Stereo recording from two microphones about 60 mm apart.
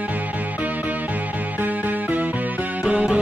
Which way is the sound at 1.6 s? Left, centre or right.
Right.